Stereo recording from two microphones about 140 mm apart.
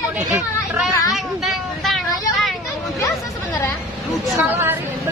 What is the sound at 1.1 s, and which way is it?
Speech, centre (ahead or behind).